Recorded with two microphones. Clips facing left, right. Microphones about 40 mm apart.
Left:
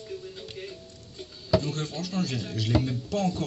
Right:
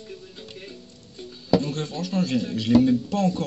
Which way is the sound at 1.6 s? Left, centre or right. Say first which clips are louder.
Right 4 dB; right.